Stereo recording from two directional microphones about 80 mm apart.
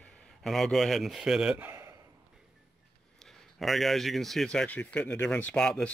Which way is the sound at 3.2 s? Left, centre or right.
Centre.